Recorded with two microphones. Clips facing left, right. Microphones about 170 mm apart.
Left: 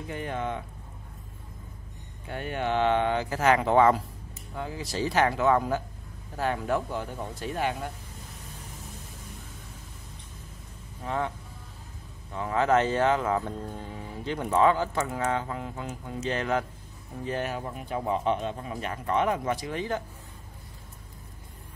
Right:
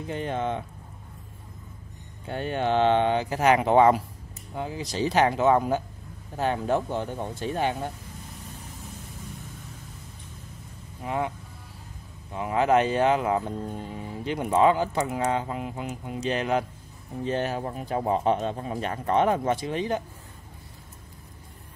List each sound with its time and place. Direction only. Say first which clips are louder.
0.1 s speech: right 4 dB; 25° right (ahead or behind)
2.2 s speech: right 4 dB; 30° right (ahead or behind)
11.1 s speech: right 2 dB; 15° right (ahead or behind)
17.2 s speech: right 4 dB; 30° right (ahead or behind)